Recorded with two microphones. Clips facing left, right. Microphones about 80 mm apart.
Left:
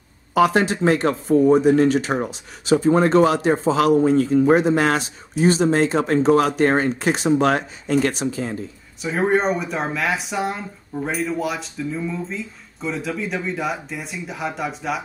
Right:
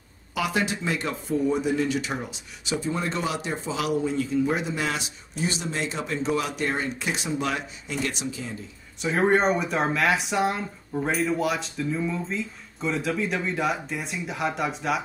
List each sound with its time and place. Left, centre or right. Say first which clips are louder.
0.3 s speech: left 9 dB; left
9.0 s speech: left 2 dB; centre